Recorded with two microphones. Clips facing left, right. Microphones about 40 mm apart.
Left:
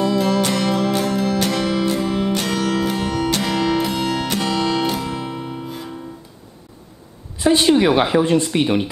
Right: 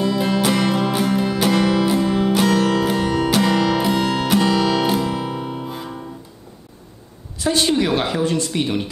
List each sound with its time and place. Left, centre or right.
0.0 s music: centre
7.3 s a woman's voice: centre